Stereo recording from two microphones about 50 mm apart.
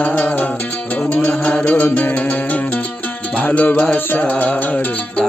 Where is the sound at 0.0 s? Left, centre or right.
Left.